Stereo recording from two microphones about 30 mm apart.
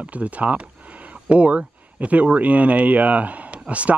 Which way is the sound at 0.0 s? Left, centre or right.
Right.